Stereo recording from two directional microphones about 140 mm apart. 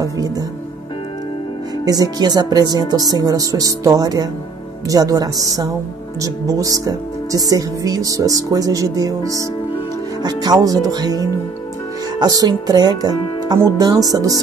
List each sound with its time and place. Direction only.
0.0 s speech: 25° right (ahead or behind)
1.9 s speech: 25° right (ahead or behind)